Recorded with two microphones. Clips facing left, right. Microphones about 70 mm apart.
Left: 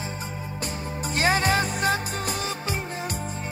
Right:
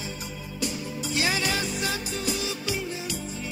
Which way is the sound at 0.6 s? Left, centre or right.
Left.